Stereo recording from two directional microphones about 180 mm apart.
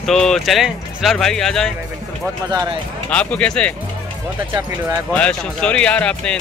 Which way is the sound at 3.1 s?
5° left (ahead or behind).